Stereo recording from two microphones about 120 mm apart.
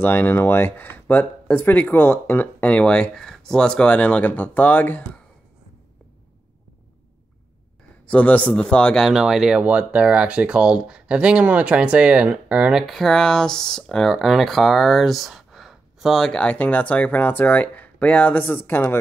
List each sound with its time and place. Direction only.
0.0 s speech: 15° left (ahead or behind)
8.1 s speech: 10° left (ahead or behind); by 12.8 s 10° right (ahead or behind)
12.8 s speech: centre (ahead or behind); by 18.9 s 20° left (ahead or behind)